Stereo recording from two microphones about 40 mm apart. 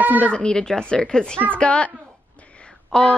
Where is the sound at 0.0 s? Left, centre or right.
Right.